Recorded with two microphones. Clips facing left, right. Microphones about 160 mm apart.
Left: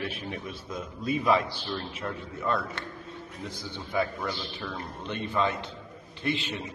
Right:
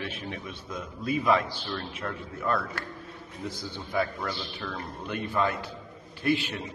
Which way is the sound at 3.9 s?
10° left (ahead or behind).